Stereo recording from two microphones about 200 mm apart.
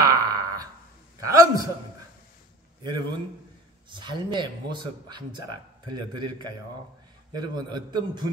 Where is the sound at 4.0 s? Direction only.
20° right (ahead or behind).